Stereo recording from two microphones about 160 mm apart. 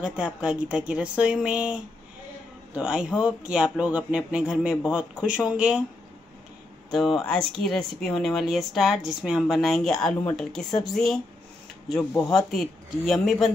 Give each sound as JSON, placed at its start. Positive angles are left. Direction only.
{"t": 0.0, "sound": "a man's voice", "side_deg": -5}
{"t": 6.9, "sound": "speech", "side_deg": 0}
{"t": 12.0, "sound": "speech", "side_deg": 20}
{"t": 12.3, "sound": "speech", "side_deg": 0}